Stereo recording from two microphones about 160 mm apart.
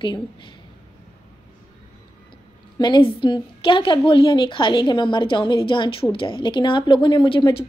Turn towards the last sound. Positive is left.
turn(degrees=30)  # may be behind; listen again after turning